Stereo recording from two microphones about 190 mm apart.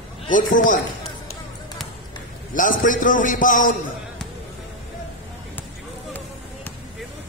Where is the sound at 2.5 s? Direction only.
45° left (ahead or behind).